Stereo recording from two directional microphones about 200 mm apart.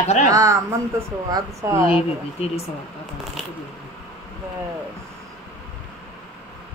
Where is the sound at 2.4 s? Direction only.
30° left (ahead or behind).